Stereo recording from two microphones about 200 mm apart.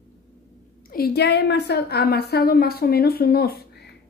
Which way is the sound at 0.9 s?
50° left (ahead or behind).